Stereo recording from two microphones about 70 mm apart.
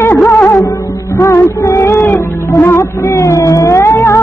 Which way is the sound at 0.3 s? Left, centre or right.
Left.